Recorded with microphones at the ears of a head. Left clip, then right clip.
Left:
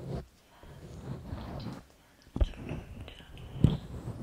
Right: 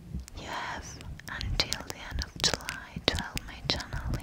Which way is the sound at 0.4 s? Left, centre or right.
Right.